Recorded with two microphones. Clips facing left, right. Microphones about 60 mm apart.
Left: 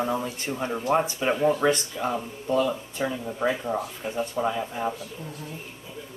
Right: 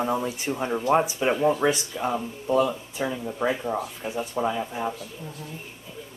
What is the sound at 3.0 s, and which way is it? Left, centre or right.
Speech, centre.